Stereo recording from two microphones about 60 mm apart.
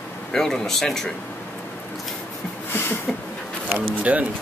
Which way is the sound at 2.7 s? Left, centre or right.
Left.